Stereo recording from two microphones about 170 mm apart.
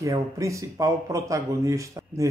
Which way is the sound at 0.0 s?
20° right (ahead or behind).